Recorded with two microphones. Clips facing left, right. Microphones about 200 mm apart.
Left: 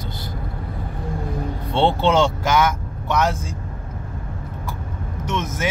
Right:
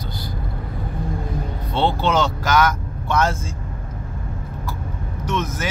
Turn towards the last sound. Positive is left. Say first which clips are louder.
# even
turn(degrees=25)  # may be behind; listen again after turning